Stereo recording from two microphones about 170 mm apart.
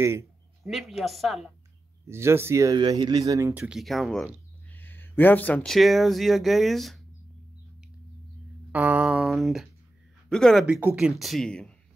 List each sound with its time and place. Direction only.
0.0 s speech: 15° right (ahead or behind)
0.7 s speech: centre (ahead or behind)
2.0 s speech: 15° right (ahead or behind)
3.6 s speech: centre (ahead or behind)
8.7 s speech: 10° right (ahead or behind)